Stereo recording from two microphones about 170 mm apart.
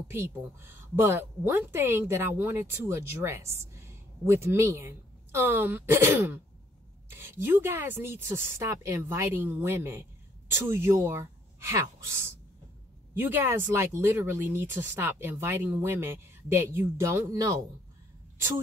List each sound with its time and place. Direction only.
0.1 s a woman's voice: 15° right (ahead or behind)